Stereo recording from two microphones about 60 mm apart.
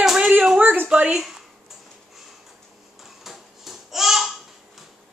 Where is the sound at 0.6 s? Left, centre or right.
Right.